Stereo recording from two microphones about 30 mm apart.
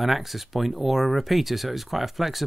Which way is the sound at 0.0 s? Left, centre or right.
Centre.